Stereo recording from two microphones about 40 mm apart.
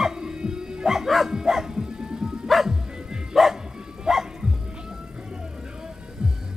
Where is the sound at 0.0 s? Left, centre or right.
Centre.